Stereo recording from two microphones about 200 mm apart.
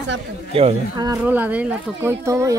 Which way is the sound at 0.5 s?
30° right (ahead or behind).